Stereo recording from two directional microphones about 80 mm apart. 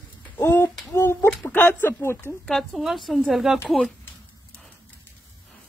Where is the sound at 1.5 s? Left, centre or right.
Left.